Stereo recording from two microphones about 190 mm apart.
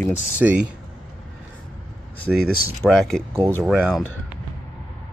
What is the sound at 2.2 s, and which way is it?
Speech, centre (ahead or behind).